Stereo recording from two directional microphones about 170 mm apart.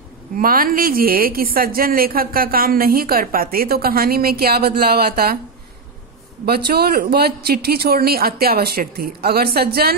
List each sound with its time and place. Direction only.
0.4 s a woman's voice: 55° right (ahead or behind)
6.4 s a woman's voice: 65° right (ahead or behind)